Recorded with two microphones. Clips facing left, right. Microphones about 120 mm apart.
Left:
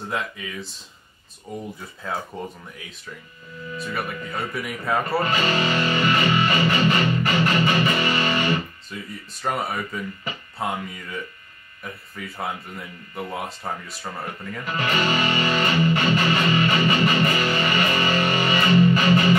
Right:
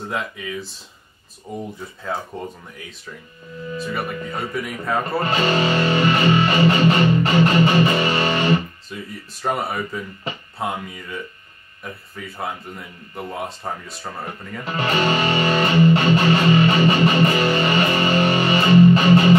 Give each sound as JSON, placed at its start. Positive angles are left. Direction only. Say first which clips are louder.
{"t": 0.1, "sound": "speech", "louder": "right 2 dB", "side_deg": 0}
{"t": 2.3, "sound": "speech", "louder": "right 2 dB", "side_deg": 0}
{"t": 3.9, "sound": "speech", "louder": "even", "side_deg": 0}
{"t": 5.3, "sound": "music", "louder": "right 3 dB", "side_deg": -30}
{"t": 9.4, "sound": "speech", "louder": "right 3 dB", "side_deg": 0}
{"t": 11.8, "sound": "speech", "louder": "right 1 dB", "side_deg": 0}
{"t": 14.6, "sound": "music", "louder": "right 3 dB", "side_deg": -25}